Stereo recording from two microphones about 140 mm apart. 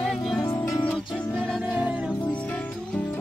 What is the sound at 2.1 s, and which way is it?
Music, 10° left (ahead or behind).